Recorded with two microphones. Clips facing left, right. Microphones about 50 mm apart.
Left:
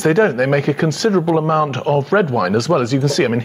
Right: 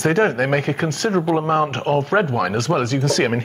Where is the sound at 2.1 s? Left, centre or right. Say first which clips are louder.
Left 3 dB; centre.